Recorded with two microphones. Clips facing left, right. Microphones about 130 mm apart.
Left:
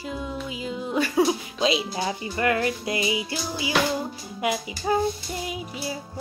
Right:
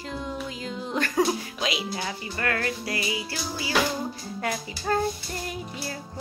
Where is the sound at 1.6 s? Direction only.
25° left (ahead or behind).